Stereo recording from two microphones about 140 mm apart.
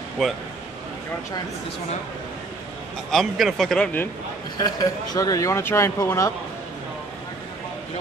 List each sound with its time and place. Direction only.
0.2 s speech: centre (ahead or behind)
3.1 s speech: centre (ahead or behind)
4.6 s speech: 25° left (ahead or behind)